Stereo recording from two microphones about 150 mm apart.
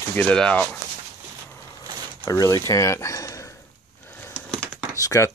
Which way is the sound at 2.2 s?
20° left (ahead or behind).